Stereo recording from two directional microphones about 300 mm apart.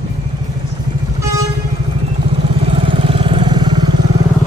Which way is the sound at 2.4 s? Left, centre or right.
Centre.